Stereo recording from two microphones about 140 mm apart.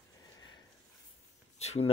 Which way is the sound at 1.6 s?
50° left (ahead or behind).